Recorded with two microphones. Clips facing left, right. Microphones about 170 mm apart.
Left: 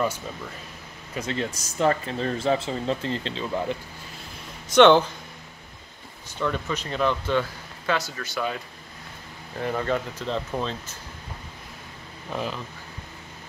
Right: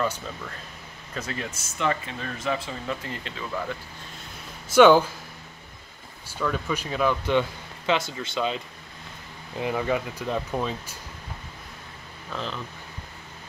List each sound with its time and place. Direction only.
1.2 s speech: 30° left (ahead or behind)
4.7 s speech: 5° right (ahead or behind)
6.2 s speech: 5° right (ahead or behind)
9.6 s speech: 10° right (ahead or behind)
12.3 s speech: 10° left (ahead or behind)